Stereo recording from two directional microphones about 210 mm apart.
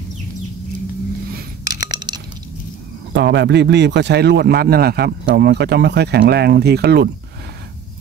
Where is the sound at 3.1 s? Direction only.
55° right (ahead or behind).